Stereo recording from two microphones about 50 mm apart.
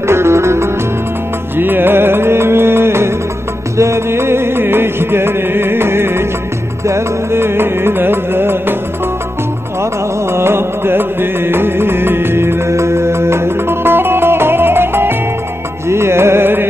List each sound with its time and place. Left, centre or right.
0.0 s music: right
1.6 s music: right
3.7 s music: right
10.3 s music: right
15.9 s music: right